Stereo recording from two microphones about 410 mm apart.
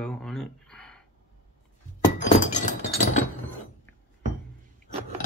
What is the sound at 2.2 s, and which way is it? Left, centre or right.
Glass, centre.